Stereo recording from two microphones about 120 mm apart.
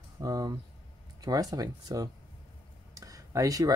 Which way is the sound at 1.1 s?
30° right (ahead or behind).